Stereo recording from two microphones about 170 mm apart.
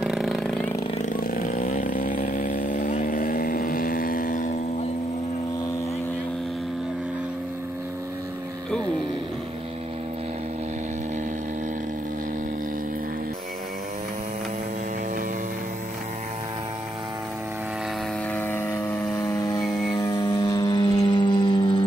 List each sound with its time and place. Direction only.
0.0 s a sound: centre (ahead or behind)
0.9 s motorcycle: 50° left (ahead or behind)
2.5 s vehicle: 55° left (ahead or behind)
18.3 s vehicle: 10° left (ahead or behind)